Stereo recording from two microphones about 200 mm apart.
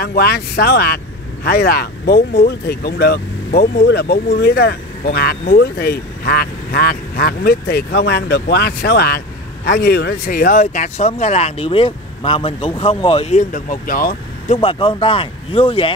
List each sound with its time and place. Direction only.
0.0 s speech: 50° left (ahead or behind)
14.6 s speech: 25° left (ahead or behind)